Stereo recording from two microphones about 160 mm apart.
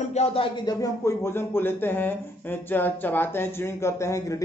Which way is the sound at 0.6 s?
20° left (ahead or behind).